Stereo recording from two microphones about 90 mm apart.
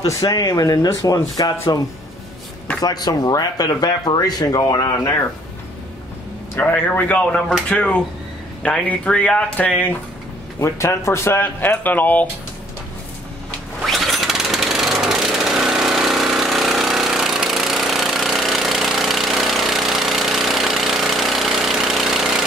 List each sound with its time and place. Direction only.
0.0 s speech: 40° left (ahead or behind)
2.8 s speech: 50° left (ahead or behind)
6.6 s speech: 20° left (ahead or behind)
10.6 s speech: 35° left (ahead or behind)
13.8 s jackhammer: centre (ahead or behind)